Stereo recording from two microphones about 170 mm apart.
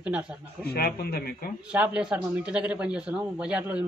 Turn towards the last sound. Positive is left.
turn(degrees=-5)  # may be behind; listen again after turning